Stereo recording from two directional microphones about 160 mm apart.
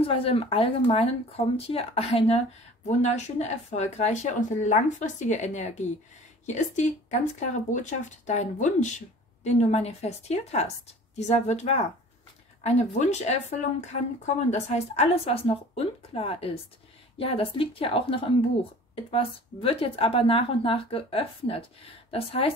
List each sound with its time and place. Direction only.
0.0 s speech: 35° left (ahead or behind)